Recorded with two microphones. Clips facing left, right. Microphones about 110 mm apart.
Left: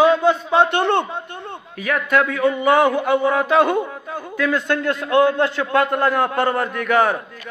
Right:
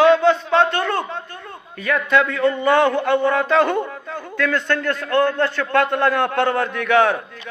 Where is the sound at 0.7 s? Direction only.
25° left (ahead or behind).